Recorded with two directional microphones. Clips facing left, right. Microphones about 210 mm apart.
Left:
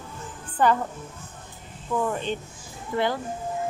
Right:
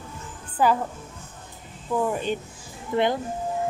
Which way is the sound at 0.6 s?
5° right (ahead or behind).